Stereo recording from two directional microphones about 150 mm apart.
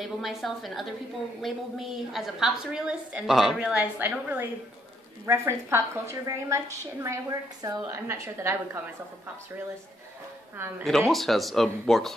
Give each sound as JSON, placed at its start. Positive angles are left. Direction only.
{"t": 0.0, "sound": "a woman's voice", "side_deg": 0}
{"t": 10.8, "sound": "a woman's voice", "side_deg": 0}